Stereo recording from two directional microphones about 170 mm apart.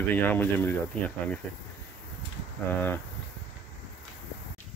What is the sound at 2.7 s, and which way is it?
Speech, 10° left (ahead or behind).